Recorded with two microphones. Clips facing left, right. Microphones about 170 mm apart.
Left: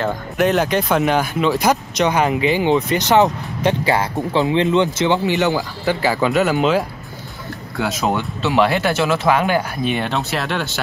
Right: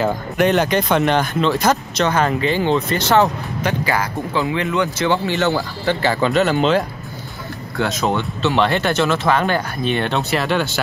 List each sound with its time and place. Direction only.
0.0 s speech: centre (ahead or behind)
3.6 s speech: 25° left (ahead or behind); by 10.8 s centre (ahead or behind)